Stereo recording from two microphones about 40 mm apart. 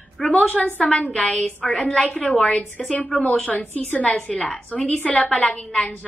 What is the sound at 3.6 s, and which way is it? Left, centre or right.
Speech, left.